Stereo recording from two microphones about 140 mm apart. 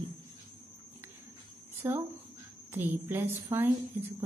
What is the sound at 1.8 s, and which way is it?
Speech, 20° right (ahead or behind).